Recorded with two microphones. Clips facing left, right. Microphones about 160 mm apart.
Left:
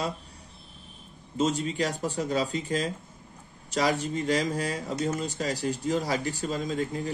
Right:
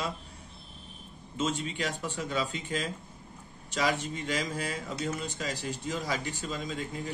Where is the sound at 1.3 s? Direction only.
40° left (ahead or behind).